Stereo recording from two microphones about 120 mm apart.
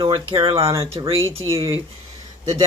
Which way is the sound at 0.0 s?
45° right (ahead or behind).